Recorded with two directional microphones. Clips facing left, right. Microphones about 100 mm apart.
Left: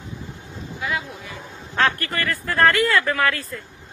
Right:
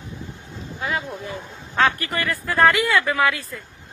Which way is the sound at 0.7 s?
35° right (ahead or behind).